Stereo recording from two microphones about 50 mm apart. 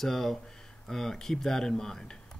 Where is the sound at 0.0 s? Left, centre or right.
Centre.